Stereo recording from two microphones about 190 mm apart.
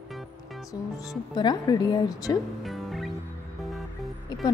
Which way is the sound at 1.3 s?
20° left (ahead or behind).